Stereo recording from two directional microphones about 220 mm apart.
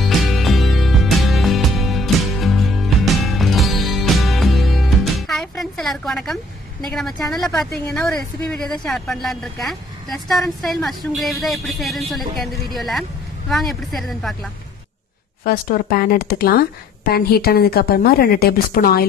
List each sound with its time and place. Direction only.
0.0 s music: centre (ahead or behind)
7.9 s a woman's voice: 5° left (ahead or behind)
15.4 s speech: 40° left (ahead or behind)